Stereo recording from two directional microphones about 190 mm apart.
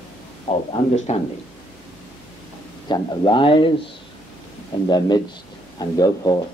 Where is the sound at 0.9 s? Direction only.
35° left (ahead or behind).